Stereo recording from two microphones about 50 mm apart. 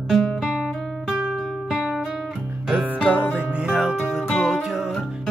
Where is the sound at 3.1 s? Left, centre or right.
Right.